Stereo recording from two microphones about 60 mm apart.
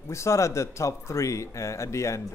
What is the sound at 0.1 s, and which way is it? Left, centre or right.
A man's voice, left.